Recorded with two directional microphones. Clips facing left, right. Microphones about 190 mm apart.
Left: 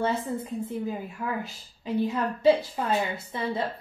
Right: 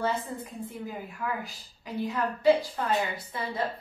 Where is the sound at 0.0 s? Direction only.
25° left (ahead or behind).